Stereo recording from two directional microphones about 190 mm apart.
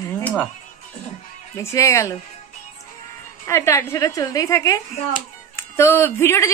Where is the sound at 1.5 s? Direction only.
15° left (ahead or behind).